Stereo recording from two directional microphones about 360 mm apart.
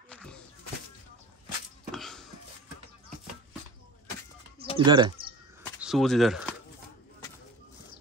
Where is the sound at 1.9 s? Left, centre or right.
Centre.